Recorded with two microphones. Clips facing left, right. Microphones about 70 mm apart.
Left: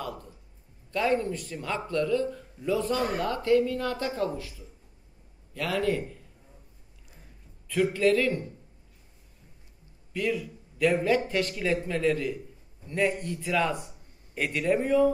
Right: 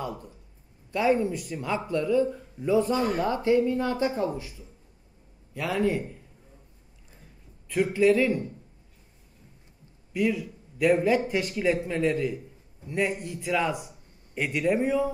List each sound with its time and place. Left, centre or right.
0.9 s a man's voice: centre
7.6 s a man's voice: centre
10.1 s a man's voice: centre